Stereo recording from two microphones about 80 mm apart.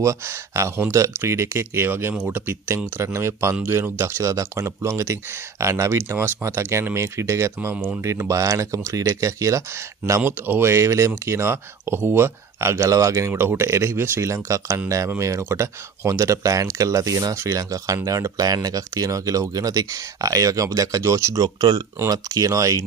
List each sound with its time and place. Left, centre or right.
0.0 s speech: right
10.2 s speech: right
13.3 s speech: right
21.4 s speech: right
22.0 s speech: right